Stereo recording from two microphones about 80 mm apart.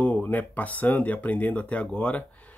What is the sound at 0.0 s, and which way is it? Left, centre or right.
Speech, left.